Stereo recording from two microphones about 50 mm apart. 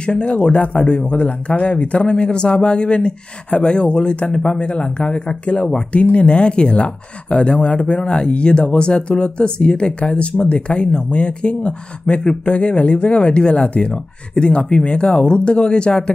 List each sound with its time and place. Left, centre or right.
0.0 s speech: left